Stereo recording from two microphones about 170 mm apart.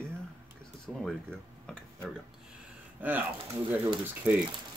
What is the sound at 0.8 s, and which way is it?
Speech, 5° left (ahead or behind).